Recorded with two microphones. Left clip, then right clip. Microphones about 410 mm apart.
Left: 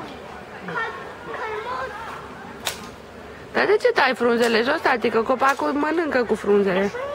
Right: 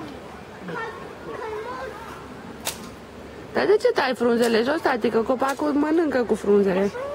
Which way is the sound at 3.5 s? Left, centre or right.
Centre.